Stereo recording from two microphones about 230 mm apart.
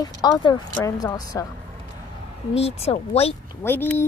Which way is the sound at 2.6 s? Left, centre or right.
Left.